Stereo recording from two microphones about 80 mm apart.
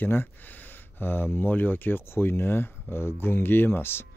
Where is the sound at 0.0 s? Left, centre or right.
Left.